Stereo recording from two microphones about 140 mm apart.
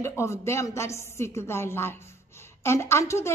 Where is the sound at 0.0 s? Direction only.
20° left (ahead or behind).